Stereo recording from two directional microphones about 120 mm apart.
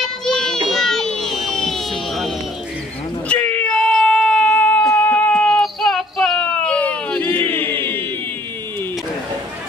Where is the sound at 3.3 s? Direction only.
15° left (ahead or behind).